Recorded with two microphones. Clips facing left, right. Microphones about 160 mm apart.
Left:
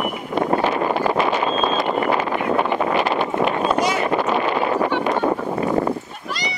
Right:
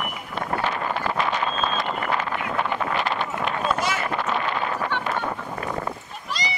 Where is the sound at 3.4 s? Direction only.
20° left (ahead or behind).